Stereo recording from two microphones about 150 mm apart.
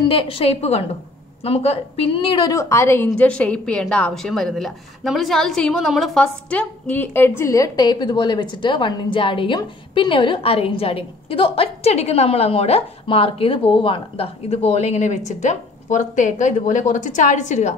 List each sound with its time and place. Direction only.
0.0 s a woman's voice: 35° left (ahead or behind); by 17.7 s 55° left (ahead or behind)